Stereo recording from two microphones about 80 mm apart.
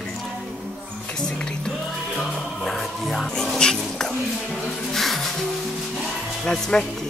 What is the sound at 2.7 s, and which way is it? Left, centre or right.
Speech, centre.